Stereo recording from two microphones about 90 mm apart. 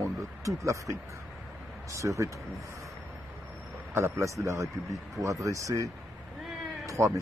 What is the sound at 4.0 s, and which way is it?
Speech, 30° right (ahead or behind).